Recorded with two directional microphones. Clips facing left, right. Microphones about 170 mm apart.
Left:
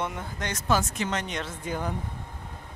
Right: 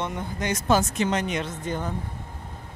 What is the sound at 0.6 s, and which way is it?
Speech, 20° right (ahead or behind).